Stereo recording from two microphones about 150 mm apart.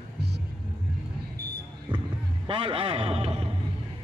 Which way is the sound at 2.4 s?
35° right (ahead or behind).